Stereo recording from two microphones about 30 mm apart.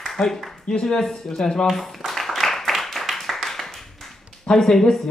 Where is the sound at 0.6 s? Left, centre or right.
Left.